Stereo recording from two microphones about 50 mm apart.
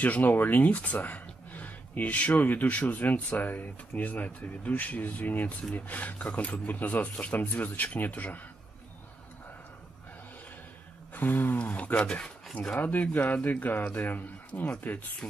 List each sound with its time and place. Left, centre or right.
0.0 s speech: left
11.1 s speech: left
11.5 s speech: left
12.8 s speech: left